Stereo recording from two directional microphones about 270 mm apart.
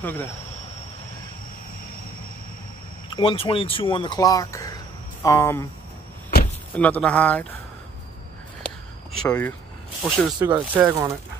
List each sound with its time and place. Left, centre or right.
0.0 s speech: centre
3.2 s speech: centre
6.7 s speech: centre
9.2 s speech: centre